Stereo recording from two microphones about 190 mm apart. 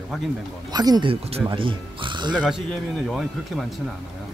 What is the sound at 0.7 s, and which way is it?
Speech, 20° right (ahead or behind).